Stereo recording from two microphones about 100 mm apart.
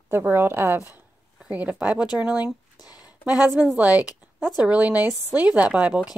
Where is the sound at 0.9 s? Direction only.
15° right (ahead or behind).